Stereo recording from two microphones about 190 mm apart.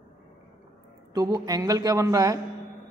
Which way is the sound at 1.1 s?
20° right (ahead or behind).